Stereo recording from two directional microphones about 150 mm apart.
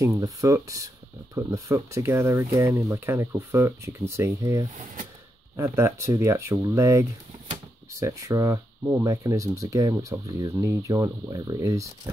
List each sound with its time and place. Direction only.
0.0 s speech: 20° right (ahead or behind)